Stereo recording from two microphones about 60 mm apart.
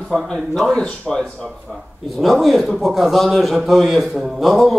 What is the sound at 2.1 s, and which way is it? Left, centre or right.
Speech, centre.